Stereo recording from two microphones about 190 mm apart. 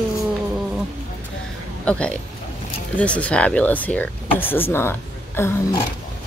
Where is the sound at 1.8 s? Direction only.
5° left (ahead or behind).